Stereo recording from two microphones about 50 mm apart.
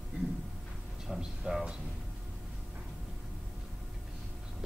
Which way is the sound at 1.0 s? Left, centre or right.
Centre.